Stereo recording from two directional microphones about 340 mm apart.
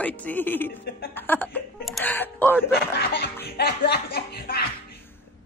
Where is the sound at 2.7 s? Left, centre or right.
Left.